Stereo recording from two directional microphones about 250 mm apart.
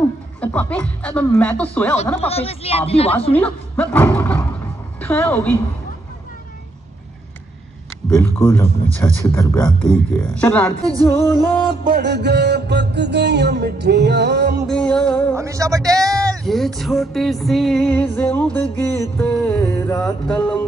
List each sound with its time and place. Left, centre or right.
0.4 s music: centre
2.1 s speech: left
3.3 s music: centre
5.0 s a woman's voice: centre
8.1 s a woman's voice: centre
9.3 s music: centre
11.1 s a woman's voice: centre
11.7 s music: right
14.7 s music: centre
15.3 s a man's voice: centre
16.4 s music: centre